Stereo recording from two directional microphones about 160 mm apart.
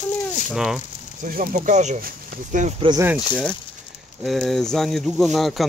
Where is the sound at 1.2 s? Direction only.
55° right (ahead or behind).